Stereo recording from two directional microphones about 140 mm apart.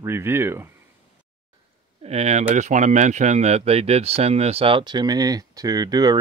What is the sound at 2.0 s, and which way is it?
Speech, 50° right (ahead or behind).